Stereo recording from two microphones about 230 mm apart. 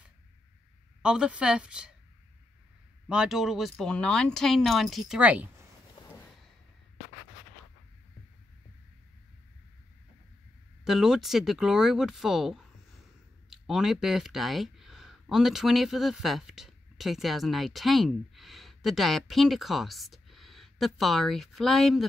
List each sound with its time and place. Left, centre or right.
1.0 s speech: centre
3.1 s speech: centre
6.0 s a sound: centre
10.8 s speech: centre